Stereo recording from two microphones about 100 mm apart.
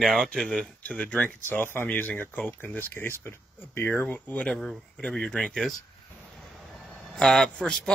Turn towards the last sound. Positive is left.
turn(degrees=10)  # may be behind; listen again after turning